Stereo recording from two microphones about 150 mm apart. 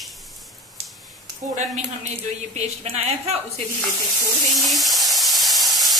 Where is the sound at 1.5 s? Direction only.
55° right (ahead or behind).